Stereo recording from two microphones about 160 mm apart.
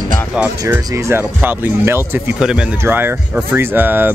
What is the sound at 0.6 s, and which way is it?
Speech, 20° right (ahead or behind).